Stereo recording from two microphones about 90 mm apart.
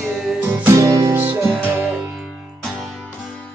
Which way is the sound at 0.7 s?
40° right (ahead or behind).